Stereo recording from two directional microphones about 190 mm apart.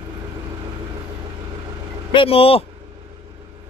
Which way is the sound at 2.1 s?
30° left (ahead or behind).